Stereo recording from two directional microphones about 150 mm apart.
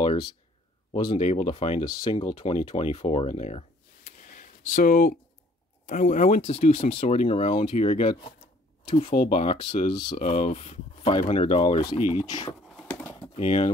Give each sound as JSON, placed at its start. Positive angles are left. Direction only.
{"t": 0.0, "sound": "speech", "side_deg": 35}
{"t": 1.9, "sound": "speech", "side_deg": 30}
{"t": 4.3, "sound": "a sound", "side_deg": 60}
{"t": 5.9, "sound": "speech", "side_deg": 60}
{"t": 10.2, "sound": "speech", "side_deg": 50}
{"t": 12.8, "sound": "typing", "side_deg": 15}
{"t": 13.3, "sound": "speech", "side_deg": 50}